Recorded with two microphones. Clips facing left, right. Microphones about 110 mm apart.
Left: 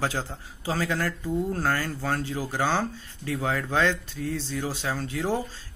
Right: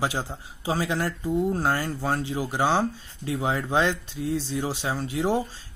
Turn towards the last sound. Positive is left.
turn(degrees=-20)  # may be behind; listen again after turning